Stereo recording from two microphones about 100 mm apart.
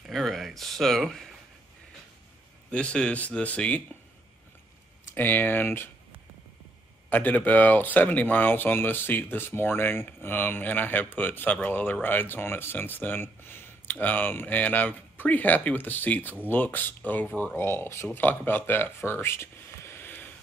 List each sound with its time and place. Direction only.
0.1 s a sound: 5° left (ahead or behind)
2.7 s speech: 10° left (ahead or behind)
5.1 s speech: 20° left (ahead or behind)
7.1 s speech: 15° left (ahead or behind)